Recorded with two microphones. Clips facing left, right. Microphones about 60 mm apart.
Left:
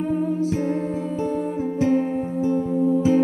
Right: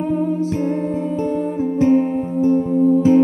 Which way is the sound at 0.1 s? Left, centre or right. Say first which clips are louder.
Right 3 dB; right.